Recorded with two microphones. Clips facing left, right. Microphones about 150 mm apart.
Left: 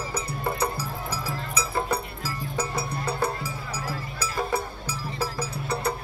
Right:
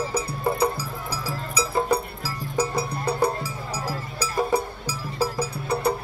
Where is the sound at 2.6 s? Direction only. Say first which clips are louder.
Right 6 dB; 15° right (ahead or behind).